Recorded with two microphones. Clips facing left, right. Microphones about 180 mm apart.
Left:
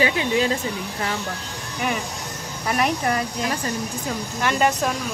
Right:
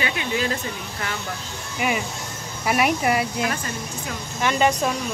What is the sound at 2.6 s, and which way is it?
Speech, 10° right (ahead or behind).